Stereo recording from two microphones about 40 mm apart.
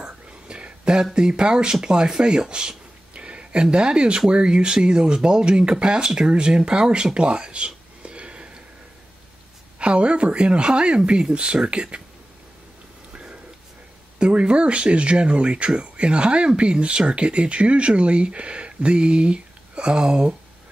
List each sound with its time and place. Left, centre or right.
0.0 s whispering: right
1.1 s speech: right
3.2 s a sound: right
3.7 s speech: right
9.8 s speech: right
13.1 s a sound: right
14.1 s speech: right